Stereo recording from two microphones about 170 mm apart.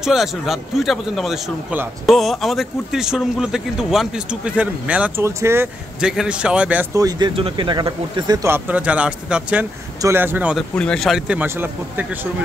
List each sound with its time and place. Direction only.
0.0 s speech: centre (ahead or behind)
5.9 s speech: 5° right (ahead or behind)
7.0 s speech: 20° right (ahead or behind)
10.8 s speech: 5° left (ahead or behind)